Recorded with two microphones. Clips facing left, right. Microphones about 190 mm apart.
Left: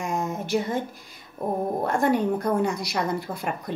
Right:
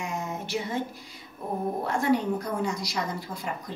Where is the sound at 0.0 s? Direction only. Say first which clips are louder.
Left 5 dB; 50° left (ahead or behind).